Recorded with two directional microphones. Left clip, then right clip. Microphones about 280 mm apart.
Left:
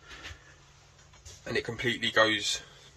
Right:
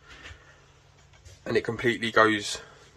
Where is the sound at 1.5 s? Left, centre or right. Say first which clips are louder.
Right 5 dB; centre.